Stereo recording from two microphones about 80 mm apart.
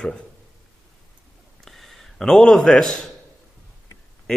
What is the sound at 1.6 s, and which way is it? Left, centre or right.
A man's voice, centre.